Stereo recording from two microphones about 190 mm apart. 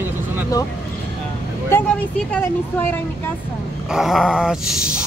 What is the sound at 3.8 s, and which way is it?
Dog, centre (ahead or behind).